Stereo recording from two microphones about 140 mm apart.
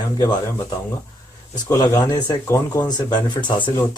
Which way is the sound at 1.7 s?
25° left (ahead or behind).